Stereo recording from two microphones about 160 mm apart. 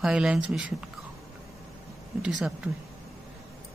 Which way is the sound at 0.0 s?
5° right (ahead or behind).